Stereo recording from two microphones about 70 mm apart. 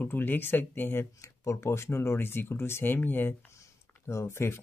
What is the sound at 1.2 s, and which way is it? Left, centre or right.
Speech, left.